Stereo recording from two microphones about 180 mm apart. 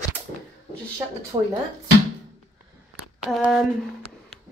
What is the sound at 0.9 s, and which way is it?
Speech, 20° right (ahead or behind).